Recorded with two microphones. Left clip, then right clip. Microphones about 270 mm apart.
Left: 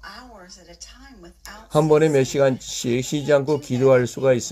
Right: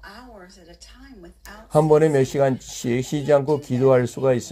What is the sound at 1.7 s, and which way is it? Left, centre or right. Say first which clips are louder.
Speech: even; centre.